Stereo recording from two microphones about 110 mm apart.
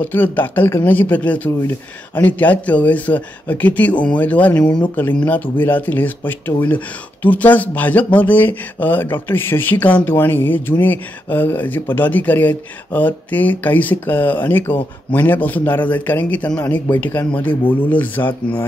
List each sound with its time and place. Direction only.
0.1 s speech: 20° left (ahead or behind)